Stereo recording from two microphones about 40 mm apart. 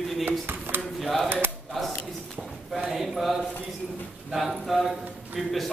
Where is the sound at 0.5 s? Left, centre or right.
Right.